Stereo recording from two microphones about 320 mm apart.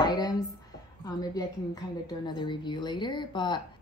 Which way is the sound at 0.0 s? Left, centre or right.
Centre.